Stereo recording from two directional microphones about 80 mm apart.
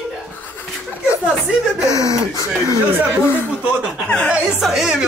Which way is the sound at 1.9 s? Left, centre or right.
Left.